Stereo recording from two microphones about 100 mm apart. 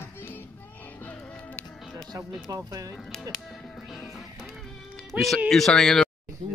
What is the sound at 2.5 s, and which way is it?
Speech, 35° right (ahead or behind).